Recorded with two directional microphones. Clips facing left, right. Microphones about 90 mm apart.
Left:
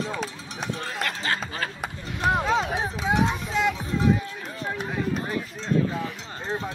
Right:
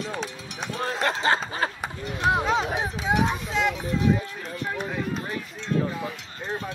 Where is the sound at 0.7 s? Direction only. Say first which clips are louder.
Right 9 dB; 30° right (ahead or behind).